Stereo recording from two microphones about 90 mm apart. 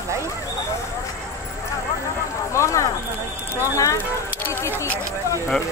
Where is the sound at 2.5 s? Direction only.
35° left (ahead or behind).